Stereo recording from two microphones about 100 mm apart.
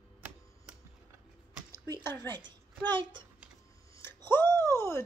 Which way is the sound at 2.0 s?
25° left (ahead or behind).